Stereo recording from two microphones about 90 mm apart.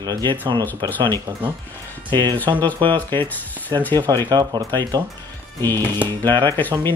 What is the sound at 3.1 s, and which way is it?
Speech, 20° left (ahead or behind).